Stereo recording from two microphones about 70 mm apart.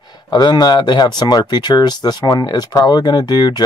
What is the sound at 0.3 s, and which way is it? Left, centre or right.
Speech, left.